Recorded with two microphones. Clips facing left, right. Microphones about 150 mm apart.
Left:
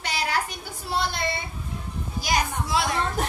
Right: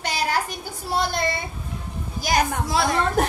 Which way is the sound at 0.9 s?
45° right (ahead or behind).